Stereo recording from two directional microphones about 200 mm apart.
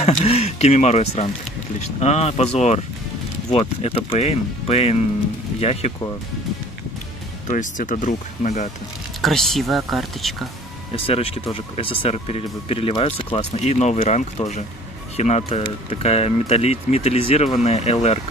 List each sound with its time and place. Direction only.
0.0 s speech: 30° left (ahead or behind)
7.4 s speech: 40° left (ahead or behind)
9.2 s speech: centre (ahead or behind)
10.9 s speech: 30° left (ahead or behind)